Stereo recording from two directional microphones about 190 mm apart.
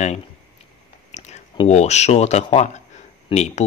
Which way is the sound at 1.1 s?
35° left (ahead or behind).